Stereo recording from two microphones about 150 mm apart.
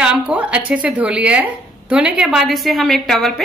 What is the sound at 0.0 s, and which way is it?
Speech, 5° right (ahead or behind).